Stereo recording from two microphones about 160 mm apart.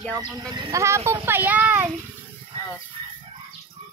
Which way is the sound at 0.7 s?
15° right (ahead or behind).